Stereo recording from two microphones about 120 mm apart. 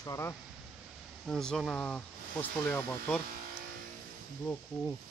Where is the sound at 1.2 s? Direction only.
5° left (ahead or behind).